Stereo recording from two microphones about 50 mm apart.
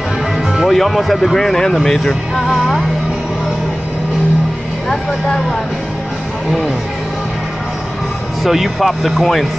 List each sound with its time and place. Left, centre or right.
0.7 s speech: centre
8.5 s speech: centre